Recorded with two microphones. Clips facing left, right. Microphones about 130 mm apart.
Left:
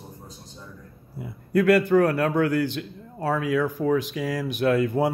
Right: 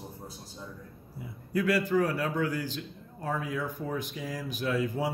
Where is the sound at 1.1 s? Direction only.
60° left (ahead or behind).